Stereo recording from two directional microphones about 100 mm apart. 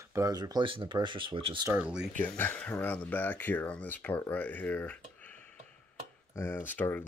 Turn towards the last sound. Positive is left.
turn(degrees=20)  # may be behind; listen again after turning